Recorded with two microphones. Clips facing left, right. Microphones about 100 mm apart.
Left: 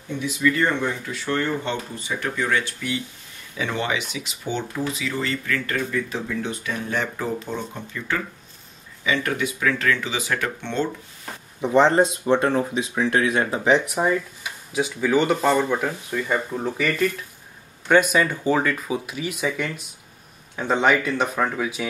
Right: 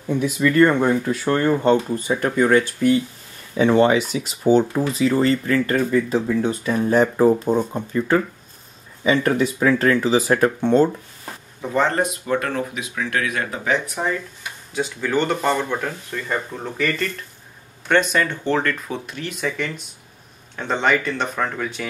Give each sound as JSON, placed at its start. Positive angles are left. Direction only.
{"t": 0.2, "sound": "speech", "side_deg": -50}
{"t": 6.4, "sound": "speech", "side_deg": -40}
{"t": 11.6, "sound": "speech", "side_deg": 20}
{"t": 14.0, "sound": "speech", "side_deg": 10}